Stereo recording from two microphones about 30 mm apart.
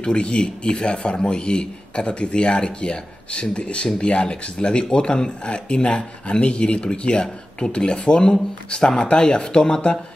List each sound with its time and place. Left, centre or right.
0.0 s a man's voice: left